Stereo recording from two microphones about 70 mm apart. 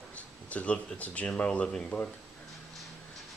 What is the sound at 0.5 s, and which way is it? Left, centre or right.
Speech, centre.